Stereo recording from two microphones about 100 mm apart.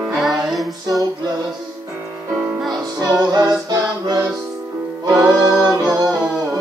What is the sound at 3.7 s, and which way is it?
Music, 45° right (ahead or behind).